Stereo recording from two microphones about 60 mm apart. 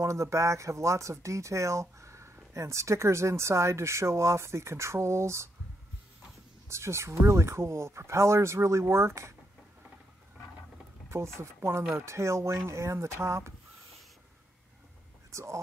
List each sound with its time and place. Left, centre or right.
0.0 s speech: right
6.7 s speech: right
11.1 s speech: right
15.3 s speech: right